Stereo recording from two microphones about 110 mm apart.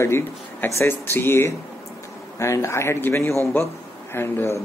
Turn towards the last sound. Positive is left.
turn(degrees=20)  # may be behind; listen again after turning